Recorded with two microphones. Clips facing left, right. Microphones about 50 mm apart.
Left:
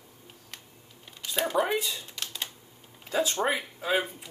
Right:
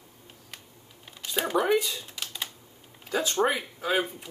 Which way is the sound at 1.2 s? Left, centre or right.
Centre.